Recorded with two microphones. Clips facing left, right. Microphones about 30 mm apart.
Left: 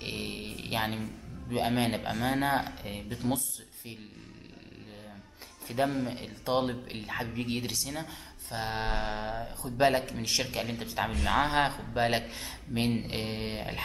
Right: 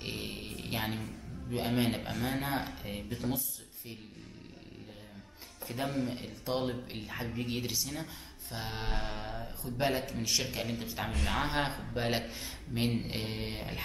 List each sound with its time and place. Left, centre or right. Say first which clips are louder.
0.0 s music: left 3 dB; centre
1.5 s speech: left 3 dB; centre
5.7 s speech: left 5 dB; centre